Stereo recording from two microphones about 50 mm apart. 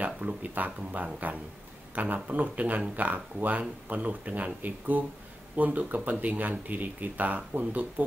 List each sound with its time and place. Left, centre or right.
0.0 s speech: right